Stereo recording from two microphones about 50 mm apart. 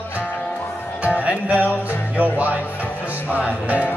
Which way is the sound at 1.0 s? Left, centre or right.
Right.